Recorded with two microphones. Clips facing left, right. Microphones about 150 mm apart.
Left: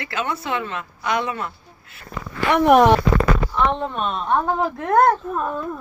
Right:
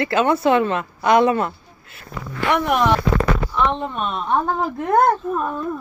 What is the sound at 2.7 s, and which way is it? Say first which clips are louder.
Speech: left 8 dB; 50° left (ahead or behind).